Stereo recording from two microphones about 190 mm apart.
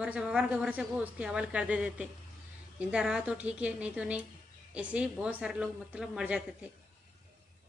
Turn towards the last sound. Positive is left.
turn(degrees=-5)  # may be behind; listen again after turning